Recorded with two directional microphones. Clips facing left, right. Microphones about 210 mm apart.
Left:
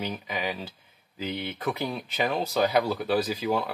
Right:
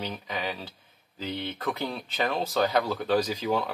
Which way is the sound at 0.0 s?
10° left (ahead or behind).